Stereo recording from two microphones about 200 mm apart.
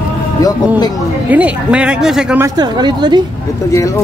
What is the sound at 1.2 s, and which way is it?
Speech, 5° right (ahead or behind).